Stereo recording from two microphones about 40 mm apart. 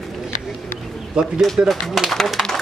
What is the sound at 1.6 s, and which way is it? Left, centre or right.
Speech, right.